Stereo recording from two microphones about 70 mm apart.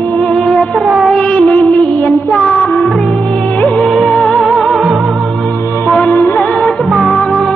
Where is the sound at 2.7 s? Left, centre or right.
Centre.